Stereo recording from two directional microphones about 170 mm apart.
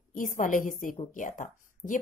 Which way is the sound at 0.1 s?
50° left (ahead or behind).